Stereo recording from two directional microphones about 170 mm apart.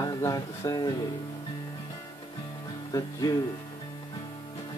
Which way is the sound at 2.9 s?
20° left (ahead or behind).